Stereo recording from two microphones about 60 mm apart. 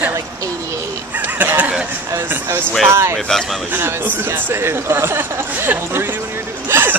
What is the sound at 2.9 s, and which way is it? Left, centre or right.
Speech, right.